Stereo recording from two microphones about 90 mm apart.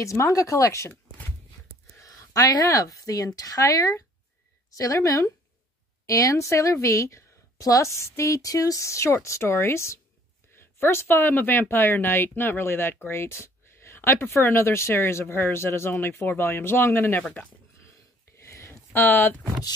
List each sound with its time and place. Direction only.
0.0 s a woman's voice: 35° left (ahead or behind)
2.0 s a woman's voice: 40° left (ahead or behind); by 17.2 s 25° left (ahead or behind)
17.2 s speech: 10° left (ahead or behind)
18.4 s a sound: 30° left (ahead or behind)
18.9 s speech: 20° left (ahead or behind)